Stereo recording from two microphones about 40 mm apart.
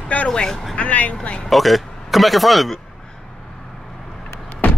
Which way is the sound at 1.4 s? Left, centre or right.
Centre.